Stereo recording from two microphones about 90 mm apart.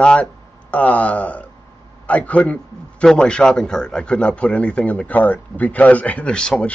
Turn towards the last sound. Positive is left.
turn(degrees=10)  # may be behind; listen again after turning